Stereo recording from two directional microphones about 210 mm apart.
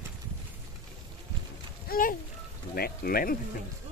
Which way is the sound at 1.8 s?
40° left (ahead or behind).